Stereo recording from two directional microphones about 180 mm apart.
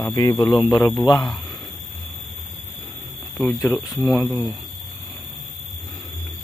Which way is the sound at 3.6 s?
15° left (ahead or behind).